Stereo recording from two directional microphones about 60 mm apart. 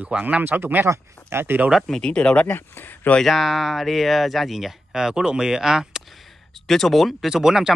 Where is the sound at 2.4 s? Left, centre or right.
Left.